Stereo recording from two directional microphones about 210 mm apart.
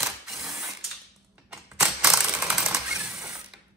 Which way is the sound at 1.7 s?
5° right (ahead or behind).